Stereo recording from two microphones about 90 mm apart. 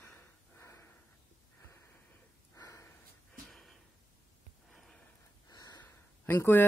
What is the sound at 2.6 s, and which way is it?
Snort, 40° left (ahead or behind).